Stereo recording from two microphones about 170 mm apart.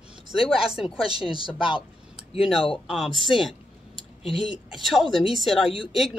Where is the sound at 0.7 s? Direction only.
5° right (ahead or behind).